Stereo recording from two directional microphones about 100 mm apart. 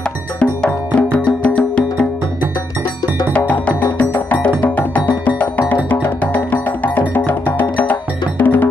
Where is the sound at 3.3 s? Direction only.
15° left (ahead or behind).